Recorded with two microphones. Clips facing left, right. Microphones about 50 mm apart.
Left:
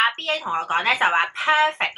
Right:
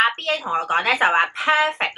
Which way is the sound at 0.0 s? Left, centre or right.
Centre.